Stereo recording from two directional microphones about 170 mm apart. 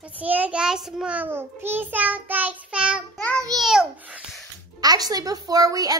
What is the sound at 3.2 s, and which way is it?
Speech, 5° left (ahead or behind).